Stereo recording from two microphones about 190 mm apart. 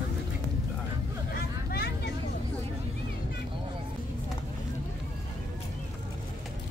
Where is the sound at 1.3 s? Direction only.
55° left (ahead or behind).